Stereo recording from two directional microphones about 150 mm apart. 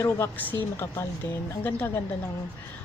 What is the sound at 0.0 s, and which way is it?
Speech, 15° left (ahead or behind).